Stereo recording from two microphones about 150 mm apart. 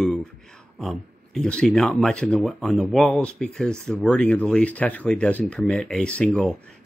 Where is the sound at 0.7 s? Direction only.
5° left (ahead or behind).